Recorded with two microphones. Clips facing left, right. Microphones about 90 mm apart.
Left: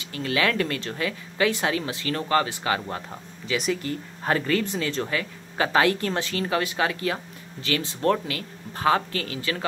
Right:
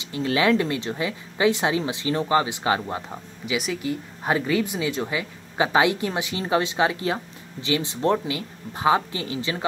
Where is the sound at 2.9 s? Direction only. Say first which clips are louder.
Right 2 dB; 10° right (ahead or behind).